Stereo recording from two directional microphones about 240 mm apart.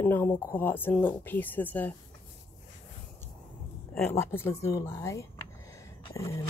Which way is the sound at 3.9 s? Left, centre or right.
Centre.